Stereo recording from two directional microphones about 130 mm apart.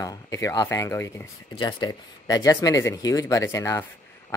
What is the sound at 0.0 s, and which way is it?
Speech, 25° left (ahead or behind).